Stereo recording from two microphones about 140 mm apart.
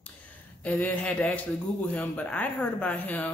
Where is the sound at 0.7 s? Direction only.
10° left (ahead or behind).